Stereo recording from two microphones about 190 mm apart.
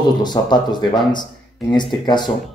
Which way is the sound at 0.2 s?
20° left (ahead or behind).